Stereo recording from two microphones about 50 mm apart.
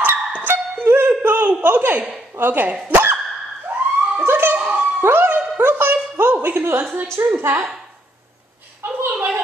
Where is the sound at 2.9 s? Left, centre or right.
Right.